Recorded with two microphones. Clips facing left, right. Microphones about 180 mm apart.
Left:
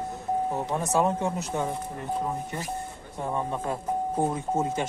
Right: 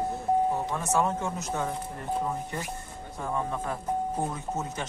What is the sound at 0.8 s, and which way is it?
Speech, 15° left (ahead or behind).